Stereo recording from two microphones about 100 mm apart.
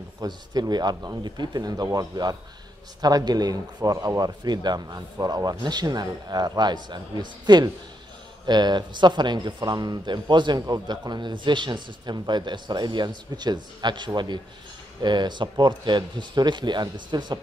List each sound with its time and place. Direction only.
0.2 s speech: 40° right (ahead or behind)